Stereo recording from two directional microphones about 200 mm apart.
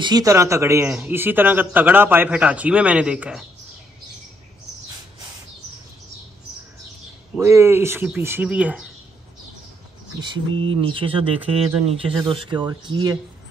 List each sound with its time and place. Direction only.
0.0 s a man's voice: 20° right (ahead or behind)
7.3 s a man's voice: 15° right (ahead or behind)
10.2 s speech: 25° right (ahead or behind)